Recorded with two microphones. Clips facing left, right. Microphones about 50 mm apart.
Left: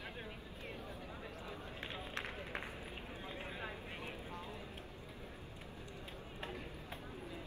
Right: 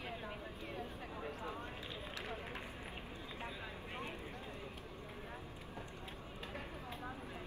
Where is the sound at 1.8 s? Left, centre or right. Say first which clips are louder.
Left 1 dB; left.